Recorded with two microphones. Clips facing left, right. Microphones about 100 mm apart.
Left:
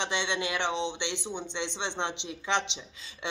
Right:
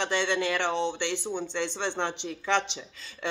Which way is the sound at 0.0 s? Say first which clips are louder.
Right 4 dB; 20° left (ahead or behind).